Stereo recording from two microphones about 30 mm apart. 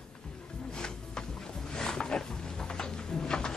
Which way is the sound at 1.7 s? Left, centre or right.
Centre.